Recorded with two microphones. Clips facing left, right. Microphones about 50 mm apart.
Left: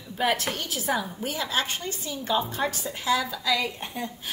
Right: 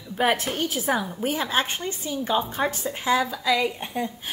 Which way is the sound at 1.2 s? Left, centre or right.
Right.